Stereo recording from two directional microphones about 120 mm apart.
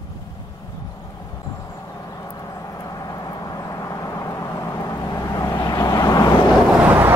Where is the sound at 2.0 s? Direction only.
30° left (ahead or behind).